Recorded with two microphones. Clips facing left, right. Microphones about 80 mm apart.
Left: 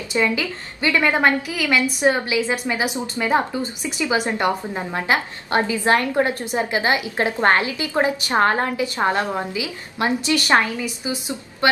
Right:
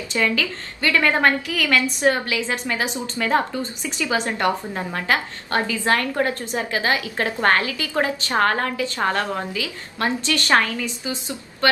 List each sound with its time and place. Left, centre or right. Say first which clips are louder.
0.1 s a woman's voice: left 1 dB; centre